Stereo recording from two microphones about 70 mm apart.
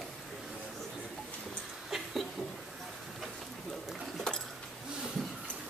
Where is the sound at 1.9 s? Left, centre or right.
Centre.